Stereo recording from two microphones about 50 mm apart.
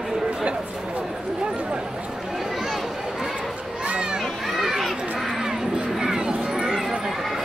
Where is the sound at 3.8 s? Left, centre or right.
Centre.